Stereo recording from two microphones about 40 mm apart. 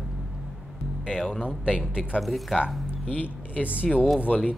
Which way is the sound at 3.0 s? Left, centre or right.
Left.